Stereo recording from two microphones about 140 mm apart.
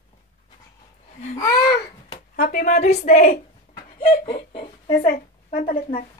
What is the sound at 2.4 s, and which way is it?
Speech, 90° left.